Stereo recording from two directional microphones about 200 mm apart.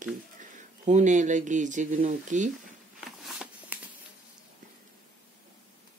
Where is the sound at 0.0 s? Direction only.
40° right (ahead or behind).